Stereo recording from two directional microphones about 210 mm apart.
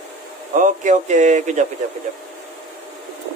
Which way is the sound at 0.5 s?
35° right (ahead or behind).